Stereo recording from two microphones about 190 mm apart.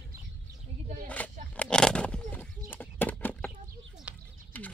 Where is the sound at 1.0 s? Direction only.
10° left (ahead or behind).